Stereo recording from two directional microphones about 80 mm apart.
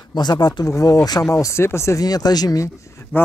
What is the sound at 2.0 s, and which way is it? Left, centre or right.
Speech, left.